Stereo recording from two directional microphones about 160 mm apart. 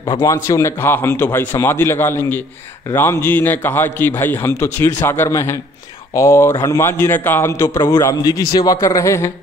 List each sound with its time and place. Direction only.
0.0 s a man's voice: 25° left (ahead or behind)